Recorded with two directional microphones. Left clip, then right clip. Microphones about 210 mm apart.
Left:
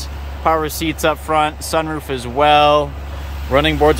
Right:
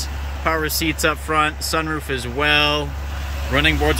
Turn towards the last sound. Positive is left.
turn(degrees=20)  # may be behind; listen again after turning